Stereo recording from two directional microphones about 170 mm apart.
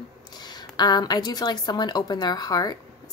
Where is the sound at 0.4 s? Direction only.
25° left (ahead or behind).